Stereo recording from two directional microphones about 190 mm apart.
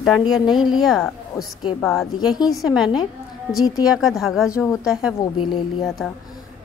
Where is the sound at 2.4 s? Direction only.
Centre (ahead or behind).